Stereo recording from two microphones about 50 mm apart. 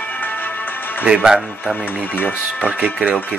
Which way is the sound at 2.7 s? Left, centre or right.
Right.